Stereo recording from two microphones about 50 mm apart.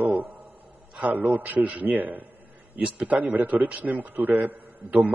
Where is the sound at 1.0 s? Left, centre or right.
Right.